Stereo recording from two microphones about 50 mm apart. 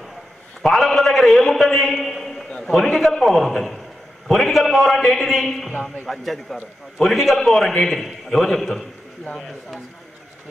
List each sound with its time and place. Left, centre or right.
0.6 s a man's voice: centre
2.0 s a sound: centre
2.5 s a man's voice: centre
5.7 s a man's voice: left
6.0 s a man's voice: centre